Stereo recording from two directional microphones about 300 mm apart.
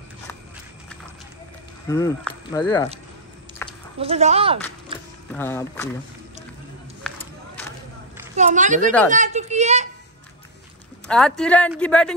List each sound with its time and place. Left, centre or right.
1.9 s speech: centre
3.6 s a sound: centre
4.0 s speech: right
5.3 s speech: centre
8.4 s a child's voice: right
11.1 s speech: centre